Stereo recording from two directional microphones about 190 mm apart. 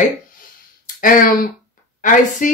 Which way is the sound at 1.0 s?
45° left (ahead or behind).